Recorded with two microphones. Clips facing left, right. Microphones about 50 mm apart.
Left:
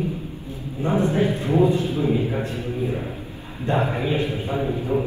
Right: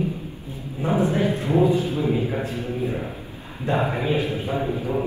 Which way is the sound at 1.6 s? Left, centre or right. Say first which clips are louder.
Left 1 dB; left.